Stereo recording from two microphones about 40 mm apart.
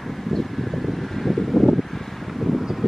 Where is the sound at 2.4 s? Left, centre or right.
Centre.